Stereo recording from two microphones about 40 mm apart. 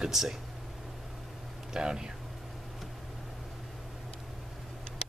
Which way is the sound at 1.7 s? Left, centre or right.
Centre.